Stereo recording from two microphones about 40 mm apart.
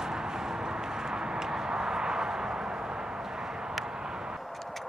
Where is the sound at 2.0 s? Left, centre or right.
Centre.